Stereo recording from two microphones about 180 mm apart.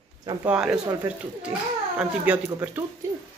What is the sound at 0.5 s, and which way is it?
Speech, 5° right (ahead or behind).